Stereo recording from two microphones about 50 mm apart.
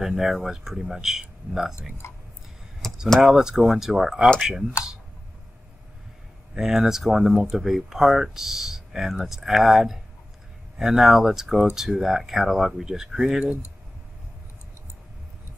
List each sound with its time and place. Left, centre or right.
0.0 s speech: centre
2.0 s speech: left
2.8 s a sound: centre
3.2 s speech: centre
6.5 s speech: centre